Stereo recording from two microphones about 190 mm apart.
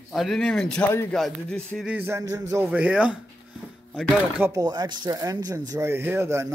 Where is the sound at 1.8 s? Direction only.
10° right (ahead or behind).